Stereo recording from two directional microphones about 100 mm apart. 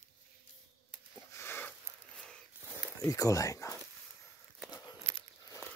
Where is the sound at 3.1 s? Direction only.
35° left (ahead or behind).